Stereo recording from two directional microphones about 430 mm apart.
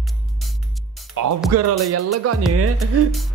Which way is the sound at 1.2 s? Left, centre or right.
Right.